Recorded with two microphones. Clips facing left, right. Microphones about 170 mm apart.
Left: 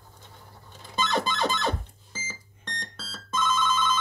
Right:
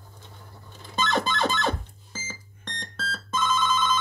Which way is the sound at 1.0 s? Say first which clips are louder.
Right 1 dB; 50° right (ahead or behind).